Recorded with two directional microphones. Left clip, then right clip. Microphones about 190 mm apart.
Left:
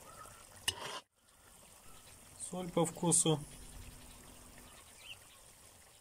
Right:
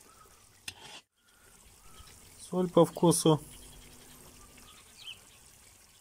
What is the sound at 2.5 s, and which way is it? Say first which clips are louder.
Speech: right 10 dB; 15° right (ahead or behind).